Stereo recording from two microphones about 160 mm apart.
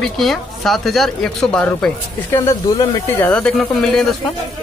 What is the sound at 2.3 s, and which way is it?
Speech, 20° left (ahead or behind).